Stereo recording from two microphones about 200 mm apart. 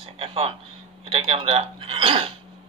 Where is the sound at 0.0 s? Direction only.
30° right (ahead or behind).